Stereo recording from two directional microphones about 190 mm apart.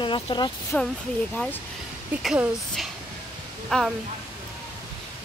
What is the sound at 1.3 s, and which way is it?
Speech, 5° left (ahead or behind).